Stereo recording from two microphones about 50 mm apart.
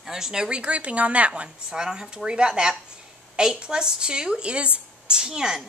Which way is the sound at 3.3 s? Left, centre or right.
Centre.